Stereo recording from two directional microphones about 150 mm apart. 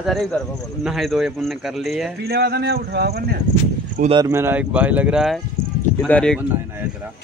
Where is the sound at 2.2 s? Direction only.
90° right.